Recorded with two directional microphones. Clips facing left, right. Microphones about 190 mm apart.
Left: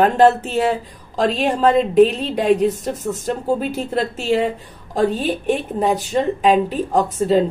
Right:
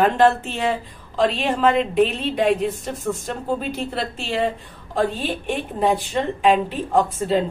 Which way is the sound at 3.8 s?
40° left (ahead or behind).